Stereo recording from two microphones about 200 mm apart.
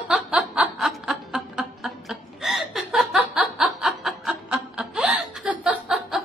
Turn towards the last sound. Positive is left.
turn(degrees=0)  # may be behind; listen again after turning